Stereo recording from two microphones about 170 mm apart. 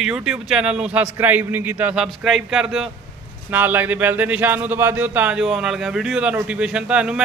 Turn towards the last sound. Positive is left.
turn(degrees=-5)  # may be behind; listen again after turning